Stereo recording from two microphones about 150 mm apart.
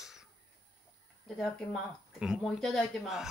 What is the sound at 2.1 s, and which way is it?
Speech, 5° right (ahead or behind).